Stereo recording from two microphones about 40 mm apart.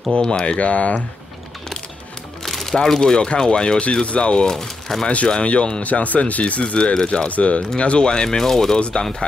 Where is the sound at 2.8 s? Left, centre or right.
Centre; by 4.4 s left.